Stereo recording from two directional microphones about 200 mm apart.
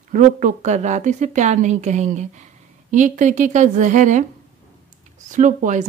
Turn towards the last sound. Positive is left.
turn(degrees=-40)  # may be behind; listen again after turning